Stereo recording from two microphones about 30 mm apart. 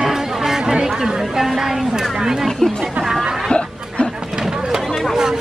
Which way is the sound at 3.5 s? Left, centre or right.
Left.